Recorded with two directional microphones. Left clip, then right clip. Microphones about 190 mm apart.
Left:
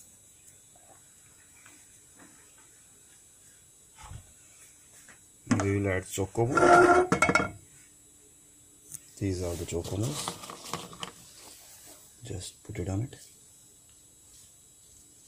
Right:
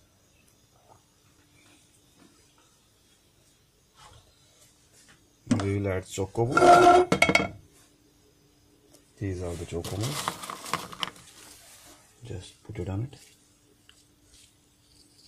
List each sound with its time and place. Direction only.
5.7 s speech: 5° right (ahead or behind)
6.5 s dishes: 30° right (ahead or behind)
9.2 s speech: 20° left (ahead or behind)
9.8 s a sound: 15° right (ahead or behind)
12.3 s speech: 15° left (ahead or behind)